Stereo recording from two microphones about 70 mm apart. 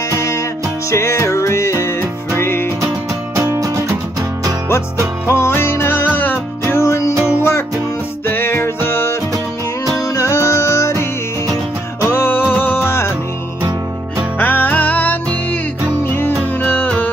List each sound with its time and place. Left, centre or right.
0.1 s music: left
3.3 s music: right
5.3 s music: left
6.7 s music: left
9.9 s music: left
12.0 s music: left
14.4 s music: left